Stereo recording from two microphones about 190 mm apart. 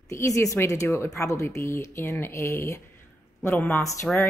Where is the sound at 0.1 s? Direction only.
15° left (ahead or behind).